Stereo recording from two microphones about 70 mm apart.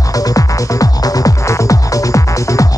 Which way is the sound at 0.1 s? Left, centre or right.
Left.